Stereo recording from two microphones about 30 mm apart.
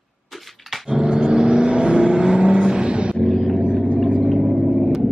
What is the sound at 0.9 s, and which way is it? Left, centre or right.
Vehicle, right.